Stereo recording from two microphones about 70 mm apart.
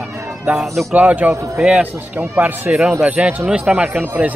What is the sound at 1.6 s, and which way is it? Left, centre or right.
Speech, centre.